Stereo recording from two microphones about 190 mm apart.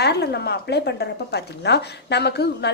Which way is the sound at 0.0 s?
60° left (ahead or behind).